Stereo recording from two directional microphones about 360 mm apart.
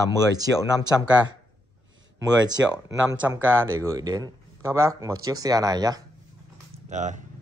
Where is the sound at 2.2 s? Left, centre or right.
Centre.